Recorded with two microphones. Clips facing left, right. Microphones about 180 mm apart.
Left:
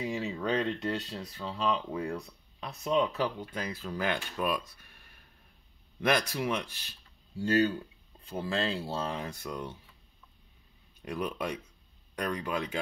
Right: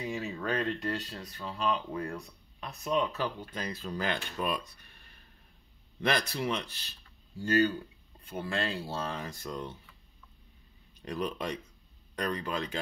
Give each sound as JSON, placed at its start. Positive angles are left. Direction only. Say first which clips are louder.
{"t": 0.0, "sound": "speech", "louder": "left 2 dB", "side_deg": 20}
{"t": 1.9, "sound": "speech", "louder": "left 2 dB", "side_deg": 15}
{"t": 7.4, "sound": "speech", "louder": "even", "side_deg": 20}
{"t": 8.8, "sound": "speech", "louder": "left 2 dB", "side_deg": 15}
{"t": 11.0, "sound": "speech", "louder": "even", "side_deg": 10}